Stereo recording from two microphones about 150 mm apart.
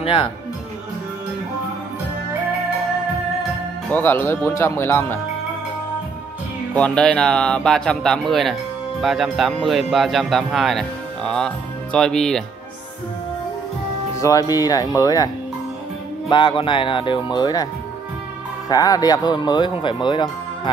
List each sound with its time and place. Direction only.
0.0 s speech: 35° left (ahead or behind)
3.9 s speech: 15° left (ahead or behind)
6.7 s speech: 5° left (ahead or behind)
14.2 s speech: 25° left (ahead or behind)
16.3 s music: 30° left (ahead or behind)
18.7 s speech: 25° left (ahead or behind)